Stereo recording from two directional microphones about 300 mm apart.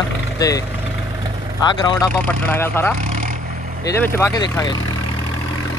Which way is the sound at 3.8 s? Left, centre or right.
Centre.